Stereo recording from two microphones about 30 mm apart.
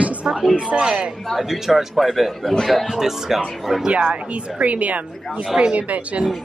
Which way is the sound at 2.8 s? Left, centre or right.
Centre.